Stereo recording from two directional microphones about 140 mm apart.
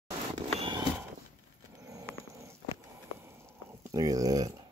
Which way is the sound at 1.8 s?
25° right (ahead or behind).